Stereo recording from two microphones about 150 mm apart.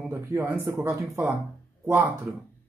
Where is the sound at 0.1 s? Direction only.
20° right (ahead or behind).